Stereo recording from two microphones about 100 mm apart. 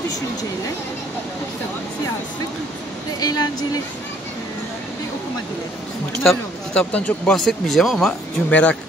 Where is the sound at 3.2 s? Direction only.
40° left (ahead or behind).